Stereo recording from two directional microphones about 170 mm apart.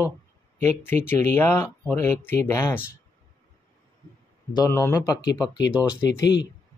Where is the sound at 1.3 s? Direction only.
15° left (ahead or behind).